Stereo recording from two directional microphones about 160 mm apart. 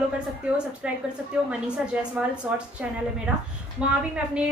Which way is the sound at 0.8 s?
5° right (ahead or behind).